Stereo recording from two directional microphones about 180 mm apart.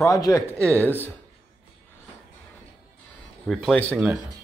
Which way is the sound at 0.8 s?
10° right (ahead or behind).